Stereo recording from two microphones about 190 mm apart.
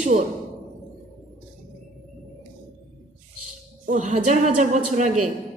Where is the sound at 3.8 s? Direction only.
40° right (ahead or behind).